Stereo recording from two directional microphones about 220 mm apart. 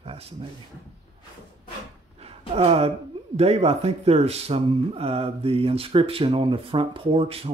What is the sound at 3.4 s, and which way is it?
Speech, 30° right (ahead or behind).